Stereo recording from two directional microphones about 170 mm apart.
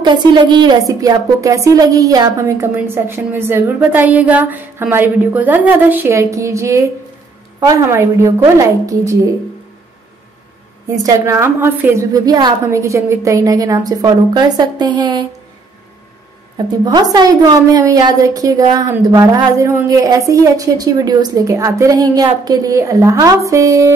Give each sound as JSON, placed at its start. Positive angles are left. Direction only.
{"t": 0.0, "sound": "speech", "side_deg": -25}
{"t": 11.0, "sound": "a woman's voice", "side_deg": -20}
{"t": 16.5, "sound": "a woman's voice", "side_deg": -25}